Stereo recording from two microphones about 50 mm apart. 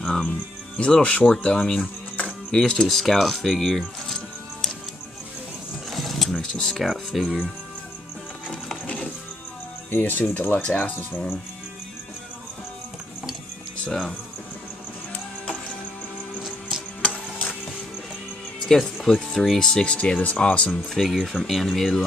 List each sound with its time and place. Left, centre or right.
0.0 s speech: centre
2.2 s music: centre
2.9 s speech: centre
5.9 s vehicle: centre
6.3 s speech: centre
6.7 s speech: centre
9.8 s speech: left
13.8 s speech: centre
18.6 s speech: centre; by 20.7 s left
20.7 s speech: centre